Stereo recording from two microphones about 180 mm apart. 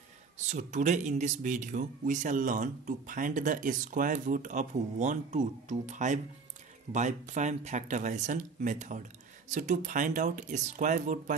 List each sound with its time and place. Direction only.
0.5 s speech: 40° right (ahead or behind)